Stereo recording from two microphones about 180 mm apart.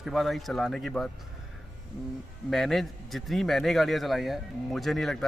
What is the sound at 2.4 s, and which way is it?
A man's voice, centre (ahead or behind).